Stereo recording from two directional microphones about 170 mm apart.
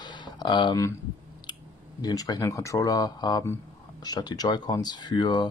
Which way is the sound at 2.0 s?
20° left (ahead or behind).